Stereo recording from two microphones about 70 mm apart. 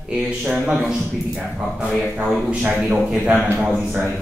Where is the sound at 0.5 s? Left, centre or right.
Centre.